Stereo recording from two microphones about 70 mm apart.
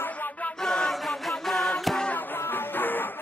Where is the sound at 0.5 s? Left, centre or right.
Centre.